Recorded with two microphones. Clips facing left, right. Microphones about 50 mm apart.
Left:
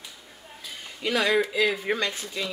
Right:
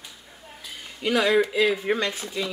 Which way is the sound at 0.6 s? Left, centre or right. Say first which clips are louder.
Right 2 dB; centre.